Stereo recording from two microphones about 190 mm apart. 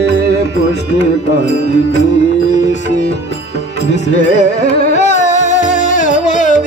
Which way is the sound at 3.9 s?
70° left (ahead or behind).